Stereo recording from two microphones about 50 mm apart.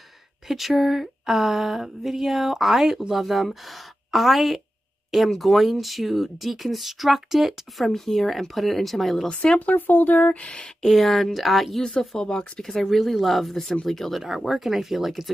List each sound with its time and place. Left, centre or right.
0.5 s speech: centre
9.3 s speech: left
10.8 s speech: centre
14.2 s speech: centre